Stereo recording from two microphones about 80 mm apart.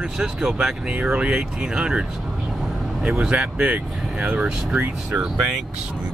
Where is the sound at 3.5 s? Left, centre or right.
Centre.